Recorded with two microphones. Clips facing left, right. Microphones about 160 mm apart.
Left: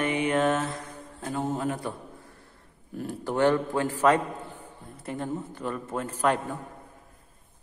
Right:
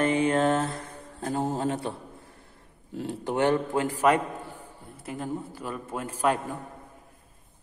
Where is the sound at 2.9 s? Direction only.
20° right (ahead or behind).